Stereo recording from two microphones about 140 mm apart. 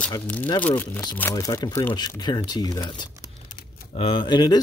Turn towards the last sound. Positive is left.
turn(degrees=30)  # may be behind; listen again after turning